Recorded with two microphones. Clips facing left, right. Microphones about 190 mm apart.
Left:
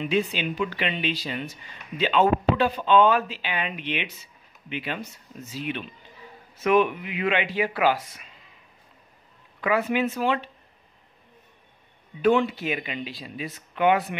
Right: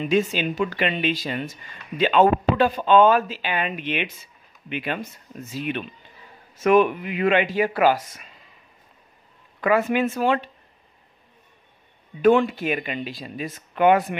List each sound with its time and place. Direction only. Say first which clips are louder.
0.0 s speech: right 4 dB; 45° right (ahead or behind)
9.6 s speech: right 3 dB; 50° right (ahead or behind)
12.2 s speech: right 4 dB; 50° right (ahead or behind)